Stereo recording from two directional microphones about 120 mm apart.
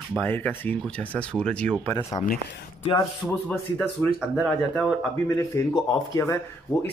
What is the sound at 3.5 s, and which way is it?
Speech, 10° left (ahead or behind).